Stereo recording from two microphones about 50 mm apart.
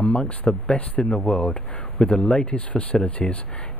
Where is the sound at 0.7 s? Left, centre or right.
Centre; by 3.4 s left.